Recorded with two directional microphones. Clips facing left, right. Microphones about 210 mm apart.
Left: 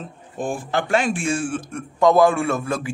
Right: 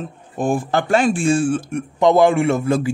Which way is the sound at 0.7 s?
40° right (ahead or behind).